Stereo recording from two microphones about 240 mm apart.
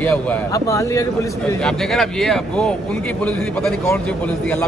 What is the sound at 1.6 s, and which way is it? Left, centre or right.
A man's voice, centre.